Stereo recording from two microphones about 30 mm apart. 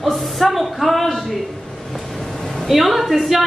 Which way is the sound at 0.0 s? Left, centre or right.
Centre.